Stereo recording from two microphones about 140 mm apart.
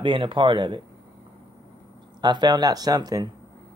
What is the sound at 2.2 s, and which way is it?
Speech, 30° right (ahead or behind).